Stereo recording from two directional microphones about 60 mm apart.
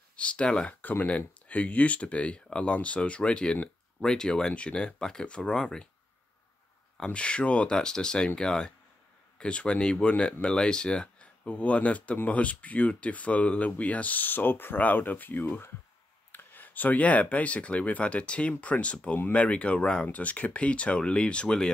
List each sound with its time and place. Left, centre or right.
0.1 s speech: centre
0.7 s speech: left; by 5.9 s centre
7.1 s speech: centre